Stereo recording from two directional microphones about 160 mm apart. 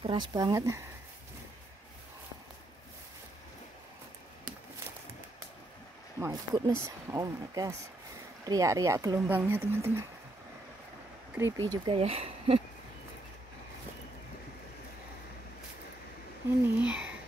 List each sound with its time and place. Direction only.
0.0 s speech: 30° right (ahead or behind)
6.1 s speech: 20° right (ahead or behind)
11.3 s speech: 15° right (ahead or behind); by 12.6 s 35° right (ahead or behind)
16.6 s a sound: 10° right (ahead or behind)